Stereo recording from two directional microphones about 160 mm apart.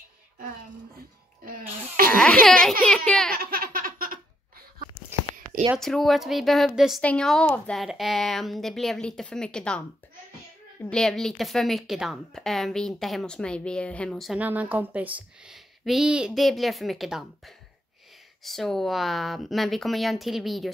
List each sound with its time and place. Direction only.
0.9 s music: 65° right (ahead or behind)
2.0 s baby cry: 65° right (ahead or behind)
2.8 s speech: 5° left (ahead or behind)
3.3 s laughter: 70° right (ahead or behind)
5.1 s a sound: 15° right (ahead or behind)
5.8 s speech: centre (ahead or behind)
14.4 s speech: 10° right (ahead or behind)